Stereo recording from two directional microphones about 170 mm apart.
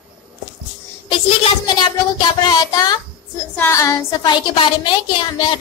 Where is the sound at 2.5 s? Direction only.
20° left (ahead or behind).